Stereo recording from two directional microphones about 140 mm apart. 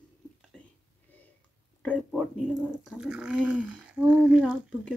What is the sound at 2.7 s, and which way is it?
Speech, 5° right (ahead or behind).